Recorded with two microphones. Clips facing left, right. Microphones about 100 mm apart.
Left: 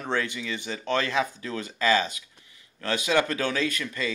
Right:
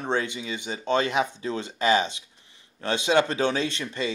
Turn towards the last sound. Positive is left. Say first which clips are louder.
# even
turn(degrees=-25)  # may be behind; listen again after turning